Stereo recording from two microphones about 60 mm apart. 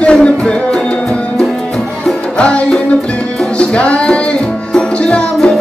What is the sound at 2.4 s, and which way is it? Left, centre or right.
Music, left.